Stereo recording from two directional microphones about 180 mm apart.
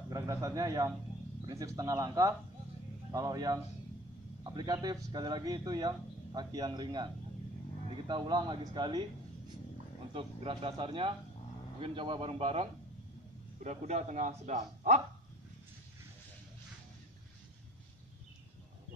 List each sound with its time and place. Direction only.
0.1 s speech: 20° right (ahead or behind)
8.1 s speech: 25° right (ahead or behind)
10.1 s a man's voice: 30° right (ahead or behind)